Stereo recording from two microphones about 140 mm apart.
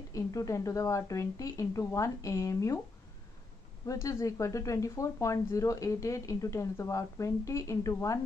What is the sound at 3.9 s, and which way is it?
Speech, 20° left (ahead or behind).